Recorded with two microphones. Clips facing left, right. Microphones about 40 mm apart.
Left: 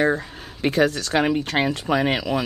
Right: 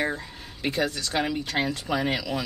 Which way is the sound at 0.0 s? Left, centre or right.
Left.